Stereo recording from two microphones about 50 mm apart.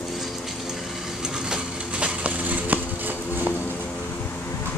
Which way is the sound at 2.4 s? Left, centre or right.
Right.